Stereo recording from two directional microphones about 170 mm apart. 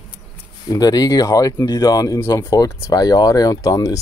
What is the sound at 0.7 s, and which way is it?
Speech, 20° left (ahead or behind).